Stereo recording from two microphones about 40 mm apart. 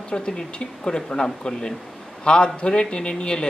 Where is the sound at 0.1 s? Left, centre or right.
Left.